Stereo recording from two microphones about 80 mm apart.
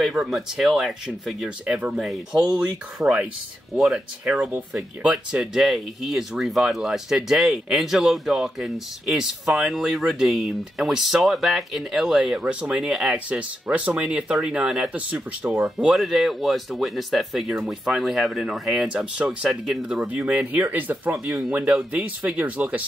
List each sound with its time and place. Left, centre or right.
0.3 s speech: centre
3.7 s speech: centre
4.4 s speech: right
5.0 s speech: centre
20.1 s speech: centre
21.3 s speech: centre